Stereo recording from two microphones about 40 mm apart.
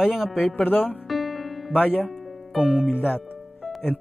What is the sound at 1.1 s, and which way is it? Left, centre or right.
Music, centre.